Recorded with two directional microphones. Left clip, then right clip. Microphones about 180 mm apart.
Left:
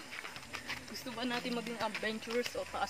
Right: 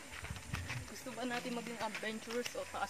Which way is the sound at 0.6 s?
50° left (ahead or behind).